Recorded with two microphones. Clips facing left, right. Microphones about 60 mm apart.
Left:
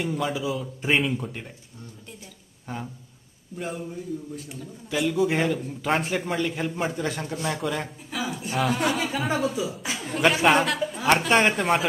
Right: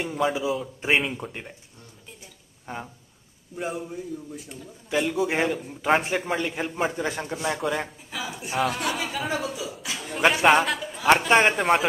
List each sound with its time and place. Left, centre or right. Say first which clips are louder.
0.0 s a man's voice: right 2 dB; centre
2.6 s a man's voice: left 1 dB; centre
9.6 s speech: left 4 dB; centre
10.1 s a man's voice: right 1 dB; centre